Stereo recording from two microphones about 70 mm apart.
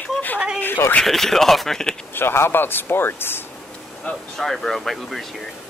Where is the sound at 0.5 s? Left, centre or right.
Left.